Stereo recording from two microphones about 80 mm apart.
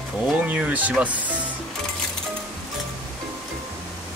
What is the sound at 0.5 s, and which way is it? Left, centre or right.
Speech, centre.